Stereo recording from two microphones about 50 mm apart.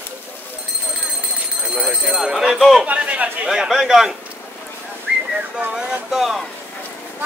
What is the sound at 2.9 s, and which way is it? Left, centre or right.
Speech, right.